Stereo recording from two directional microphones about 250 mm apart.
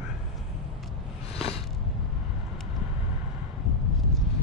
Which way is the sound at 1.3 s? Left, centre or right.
Left.